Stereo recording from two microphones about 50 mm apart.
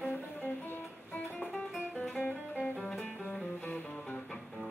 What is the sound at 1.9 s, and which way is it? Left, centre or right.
Music, left.